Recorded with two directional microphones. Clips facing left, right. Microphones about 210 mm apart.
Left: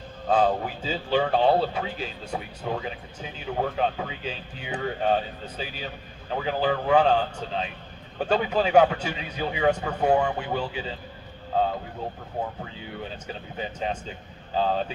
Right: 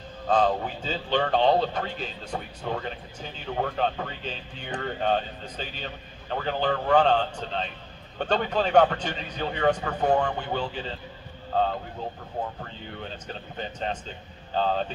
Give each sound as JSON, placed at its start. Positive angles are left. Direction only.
{"t": 0.3, "sound": "speech", "side_deg": 10}
{"t": 13.3, "sound": "speech", "side_deg": 5}